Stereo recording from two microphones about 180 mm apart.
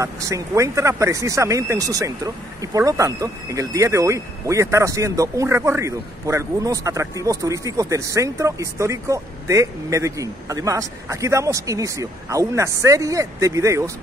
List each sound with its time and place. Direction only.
0.0 s speech: 15° right (ahead or behind)